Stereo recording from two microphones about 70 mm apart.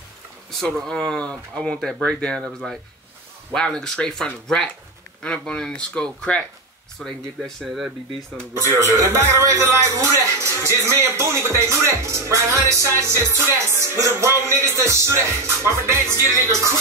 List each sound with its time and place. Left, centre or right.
0.5 s speech: centre
3.5 s speech: centre
8.4 s speech: right